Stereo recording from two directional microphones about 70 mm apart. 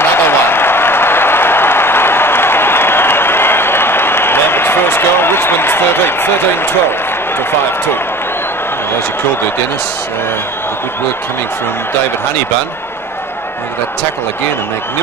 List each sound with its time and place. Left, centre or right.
0.0 s applause: left